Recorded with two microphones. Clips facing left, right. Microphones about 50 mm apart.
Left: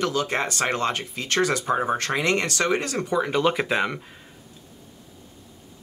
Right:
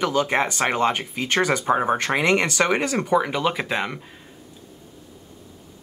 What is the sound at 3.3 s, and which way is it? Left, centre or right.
Speech, centre.